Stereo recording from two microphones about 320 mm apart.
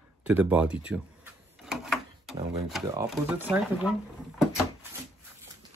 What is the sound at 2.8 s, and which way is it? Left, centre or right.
Speech, centre.